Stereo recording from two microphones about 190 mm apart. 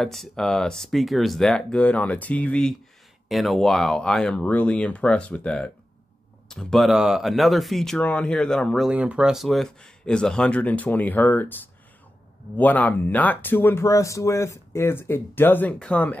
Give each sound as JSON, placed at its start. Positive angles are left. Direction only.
{"t": 0.0, "sound": "speech", "side_deg": 0}
{"t": 12.5, "sound": "speech", "side_deg": 10}